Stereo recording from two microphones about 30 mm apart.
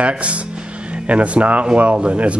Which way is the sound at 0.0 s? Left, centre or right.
Right.